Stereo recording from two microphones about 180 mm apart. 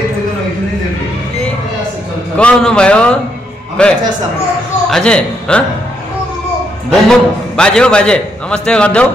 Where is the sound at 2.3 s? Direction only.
5° left (ahead or behind).